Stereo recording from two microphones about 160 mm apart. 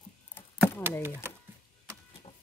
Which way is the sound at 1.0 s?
15° right (ahead or behind).